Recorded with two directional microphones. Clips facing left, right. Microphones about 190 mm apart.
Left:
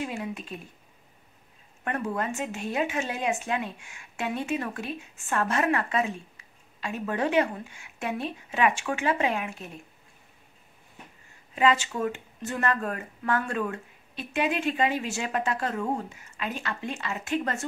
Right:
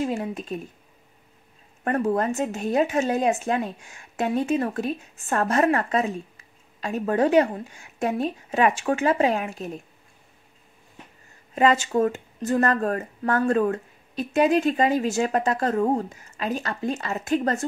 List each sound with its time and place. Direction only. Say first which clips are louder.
0.0 s speech: right 6 dB; 40° right (ahead or behind)
1.9 s speech: right 7 dB; 40° right (ahead or behind)
11.5 s speech: right 5 dB; 45° right (ahead or behind)